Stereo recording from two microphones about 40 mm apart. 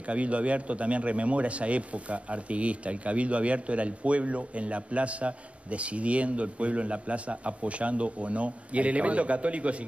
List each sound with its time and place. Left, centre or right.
0.0 s a man's voice: right